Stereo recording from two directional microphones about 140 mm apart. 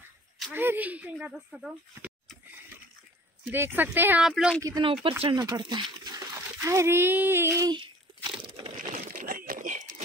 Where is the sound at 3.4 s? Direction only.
15° right (ahead or behind).